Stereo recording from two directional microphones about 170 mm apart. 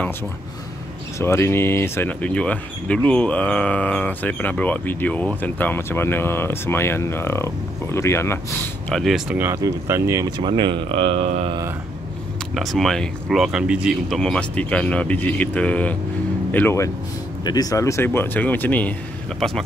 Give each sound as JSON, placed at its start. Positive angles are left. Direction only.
{"t": 1.1, "sound": "speech", "side_deg": 15}
{"t": 8.8, "sound": "speech", "side_deg": 0}
{"t": 10.5, "sound": "speech", "side_deg": -30}
{"t": 12.5, "sound": "speech", "side_deg": 0}